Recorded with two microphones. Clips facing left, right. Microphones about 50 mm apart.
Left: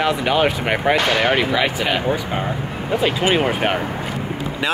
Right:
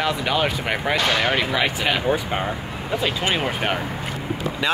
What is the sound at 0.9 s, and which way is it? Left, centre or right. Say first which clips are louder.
Speech: left 3 dB; left.